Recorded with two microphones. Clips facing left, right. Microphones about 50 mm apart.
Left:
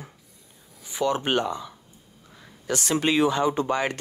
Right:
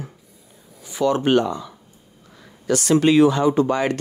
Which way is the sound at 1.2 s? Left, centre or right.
Left.